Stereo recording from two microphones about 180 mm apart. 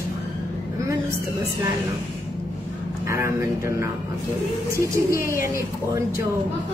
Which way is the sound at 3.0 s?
15° right (ahead or behind).